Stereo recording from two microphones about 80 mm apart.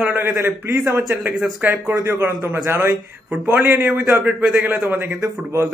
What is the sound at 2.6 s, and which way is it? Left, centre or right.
Speech, right.